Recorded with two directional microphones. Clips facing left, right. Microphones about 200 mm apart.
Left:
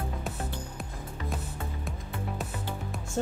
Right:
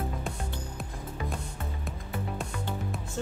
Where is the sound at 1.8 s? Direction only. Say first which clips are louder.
Right 1 dB; centre (ahead or behind).